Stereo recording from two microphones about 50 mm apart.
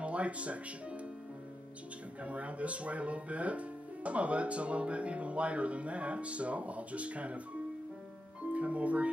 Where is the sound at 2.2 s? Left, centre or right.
Right.